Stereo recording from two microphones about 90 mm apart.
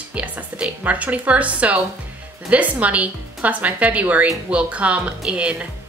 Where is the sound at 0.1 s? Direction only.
15° right (ahead or behind).